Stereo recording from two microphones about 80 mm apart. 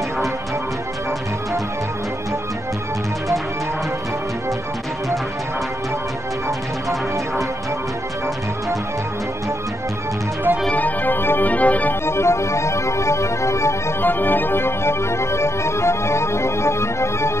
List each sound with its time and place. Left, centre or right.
10.7 s organ: left
12.1 s organ: left
14.0 s organ: left